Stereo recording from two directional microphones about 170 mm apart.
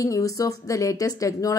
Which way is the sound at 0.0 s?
20° left (ahead or behind).